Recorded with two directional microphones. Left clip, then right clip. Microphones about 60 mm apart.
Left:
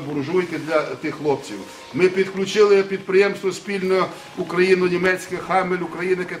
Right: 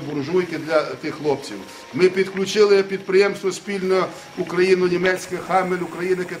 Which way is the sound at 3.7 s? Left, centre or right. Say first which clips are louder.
Even; right.